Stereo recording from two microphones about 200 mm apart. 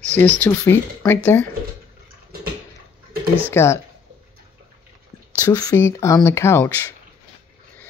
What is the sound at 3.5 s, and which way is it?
Speech, 15° left (ahead or behind).